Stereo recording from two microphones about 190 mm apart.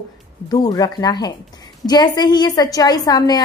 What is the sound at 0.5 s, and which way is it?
A woman's voice, 20° left (ahead or behind).